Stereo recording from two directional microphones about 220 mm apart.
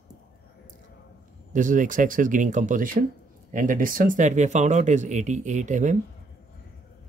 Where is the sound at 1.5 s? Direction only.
35° right (ahead or behind).